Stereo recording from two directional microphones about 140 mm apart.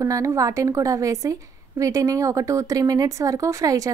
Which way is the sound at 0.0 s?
20° right (ahead or behind).